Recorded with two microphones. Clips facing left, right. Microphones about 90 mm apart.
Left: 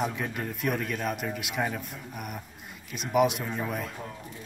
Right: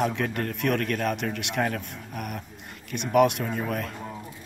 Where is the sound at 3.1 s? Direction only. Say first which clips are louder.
Right 3 dB; 5° left (ahead or behind).